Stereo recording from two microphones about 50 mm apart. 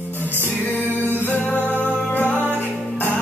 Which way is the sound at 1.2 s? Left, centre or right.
Left.